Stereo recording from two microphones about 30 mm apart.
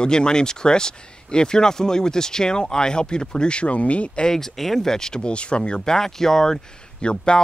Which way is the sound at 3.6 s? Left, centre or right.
Left.